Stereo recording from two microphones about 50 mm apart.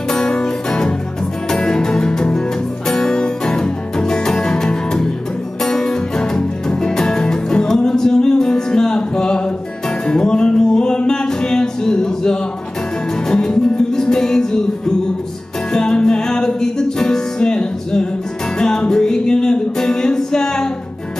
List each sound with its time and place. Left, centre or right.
0.1 s music: centre
15.7 s music: centre